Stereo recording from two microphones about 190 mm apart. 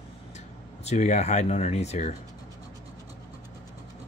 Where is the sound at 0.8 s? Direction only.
35° left (ahead or behind).